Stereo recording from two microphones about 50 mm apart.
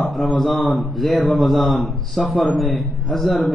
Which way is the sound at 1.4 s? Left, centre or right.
Centre.